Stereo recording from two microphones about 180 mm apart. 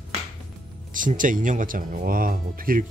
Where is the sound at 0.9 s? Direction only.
50° right (ahead or behind).